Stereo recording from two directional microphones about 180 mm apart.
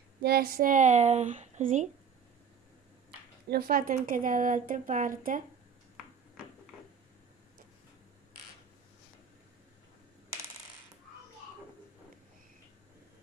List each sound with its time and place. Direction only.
0.2 s speech: 55° right (ahead or behind)
3.4 s speech: 55° right (ahead or behind)